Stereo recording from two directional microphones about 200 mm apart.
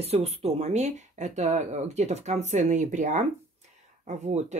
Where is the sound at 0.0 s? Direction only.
30° right (ahead or behind).